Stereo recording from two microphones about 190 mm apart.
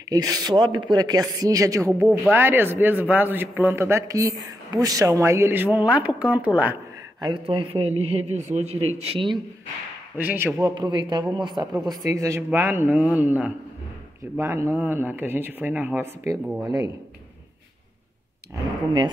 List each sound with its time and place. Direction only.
0.1 s a man's voice: 20° right (ahead or behind)
7.2 s a man's voice: 25° right (ahead or behind)
10.1 s a man's voice: 10° right (ahead or behind)
10.7 s a man's voice: 25° right (ahead or behind)